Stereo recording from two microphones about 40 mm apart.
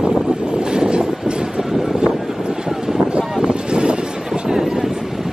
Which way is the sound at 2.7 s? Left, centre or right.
Centre.